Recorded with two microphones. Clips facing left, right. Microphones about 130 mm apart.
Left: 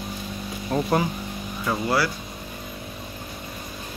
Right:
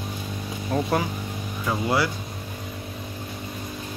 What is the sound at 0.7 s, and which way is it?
Speech, centre (ahead or behind).